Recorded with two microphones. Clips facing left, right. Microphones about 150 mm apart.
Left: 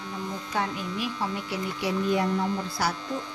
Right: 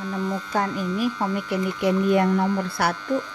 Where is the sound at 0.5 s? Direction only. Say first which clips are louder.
Right 4 dB; 45° right (ahead or behind); by 2.9 s 60° right (ahead or behind).